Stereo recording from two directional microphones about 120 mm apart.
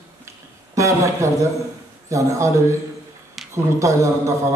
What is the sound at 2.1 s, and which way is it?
A man's voice, 25° right (ahead or behind).